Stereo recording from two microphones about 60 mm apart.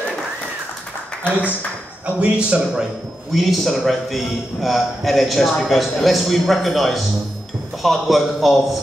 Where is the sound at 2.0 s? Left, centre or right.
Right.